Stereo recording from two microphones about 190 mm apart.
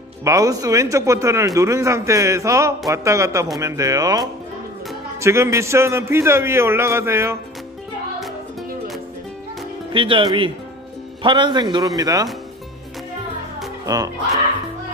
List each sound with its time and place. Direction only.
0.2 s a man's voice: 15° right (ahead or behind)
9.9 s a man's voice: 25° right (ahead or behind)
13.8 s a man's voice: 20° right (ahead or behind)